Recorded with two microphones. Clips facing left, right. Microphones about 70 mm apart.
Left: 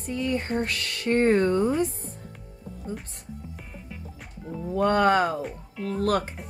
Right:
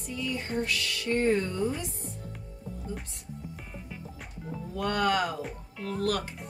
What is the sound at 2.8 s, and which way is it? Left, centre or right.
Speech, left.